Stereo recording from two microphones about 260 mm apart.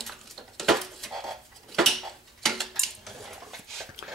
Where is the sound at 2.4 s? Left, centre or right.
Centre.